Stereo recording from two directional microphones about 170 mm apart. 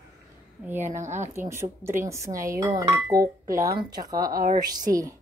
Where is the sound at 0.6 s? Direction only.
10° right (ahead or behind).